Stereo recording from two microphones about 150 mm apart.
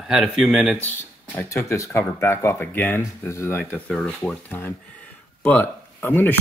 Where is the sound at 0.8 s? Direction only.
15° left (ahead or behind).